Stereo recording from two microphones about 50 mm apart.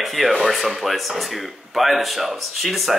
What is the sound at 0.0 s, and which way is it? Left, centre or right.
Speech, centre.